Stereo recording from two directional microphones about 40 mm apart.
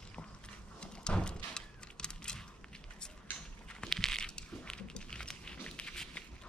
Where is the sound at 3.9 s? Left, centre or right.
Centre.